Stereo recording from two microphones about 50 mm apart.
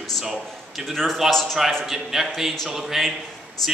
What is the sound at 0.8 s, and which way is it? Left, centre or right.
A man's voice, centre.